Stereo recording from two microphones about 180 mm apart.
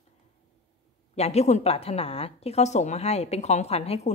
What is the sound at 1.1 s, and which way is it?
A woman's voice, 35° left (ahead or behind).